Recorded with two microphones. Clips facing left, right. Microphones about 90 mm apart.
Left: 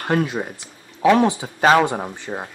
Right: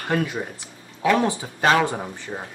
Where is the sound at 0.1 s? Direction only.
25° left (ahead or behind).